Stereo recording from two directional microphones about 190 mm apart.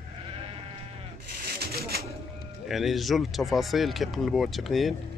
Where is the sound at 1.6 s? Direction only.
55° right (ahead or behind).